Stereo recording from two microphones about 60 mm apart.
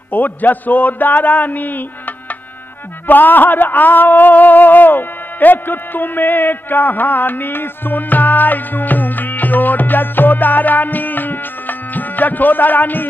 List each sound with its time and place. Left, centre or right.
0.1 s a man's voice: left